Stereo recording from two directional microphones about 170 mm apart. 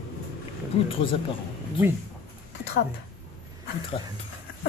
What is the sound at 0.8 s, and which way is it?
Speech, 30° left (ahead or behind).